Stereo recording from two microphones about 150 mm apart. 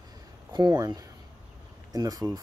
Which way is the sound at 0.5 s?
30° right (ahead or behind).